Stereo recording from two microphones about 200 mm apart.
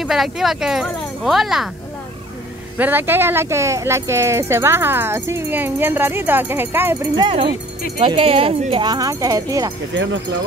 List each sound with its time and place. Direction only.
0.0 s speech: centre (ahead or behind)
2.8 s speech: 10° right (ahead or behind)
8.0 s speech: 25° right (ahead or behind)